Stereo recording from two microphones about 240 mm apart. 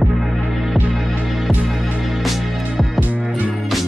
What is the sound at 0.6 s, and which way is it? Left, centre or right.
Music, centre.